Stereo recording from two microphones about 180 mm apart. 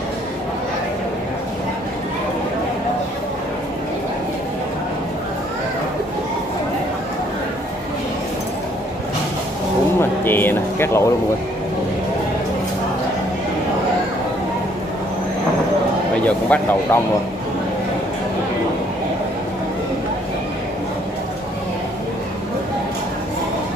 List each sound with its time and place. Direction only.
9.9 s music: 10° left (ahead or behind)
16.3 s a man's voice: 10° left (ahead or behind)